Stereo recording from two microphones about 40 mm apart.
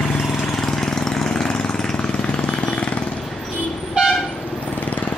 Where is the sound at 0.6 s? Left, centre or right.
Centre.